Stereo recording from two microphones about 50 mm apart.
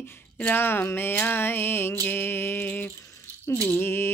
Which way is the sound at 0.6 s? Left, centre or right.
Left.